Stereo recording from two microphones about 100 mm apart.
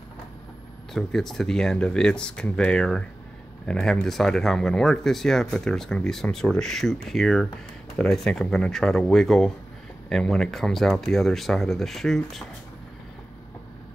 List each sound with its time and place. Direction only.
0.9 s speech: 5° left (ahead or behind)